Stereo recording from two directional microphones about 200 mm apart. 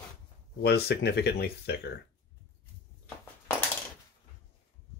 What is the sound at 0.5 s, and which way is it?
Speech, 55° left (ahead or behind).